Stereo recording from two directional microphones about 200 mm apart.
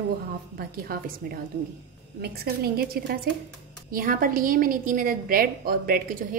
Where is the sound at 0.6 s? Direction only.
50° right (ahead or behind).